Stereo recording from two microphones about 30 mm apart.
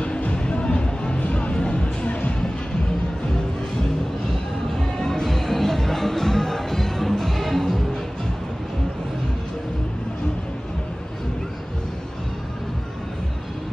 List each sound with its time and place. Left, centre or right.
0.0 s music: left
4.9 s music: centre